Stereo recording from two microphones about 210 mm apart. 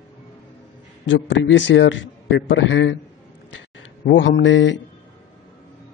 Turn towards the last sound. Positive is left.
turn(degrees=60)  # may be behind; listen again after turning